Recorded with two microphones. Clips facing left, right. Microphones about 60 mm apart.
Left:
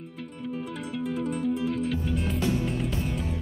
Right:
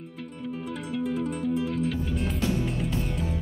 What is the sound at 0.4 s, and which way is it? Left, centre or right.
Music, centre.